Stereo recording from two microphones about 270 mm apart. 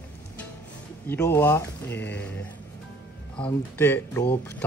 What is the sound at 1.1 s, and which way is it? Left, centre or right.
Speech, centre.